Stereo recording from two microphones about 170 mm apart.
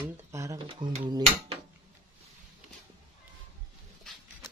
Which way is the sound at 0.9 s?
35° right (ahead or behind).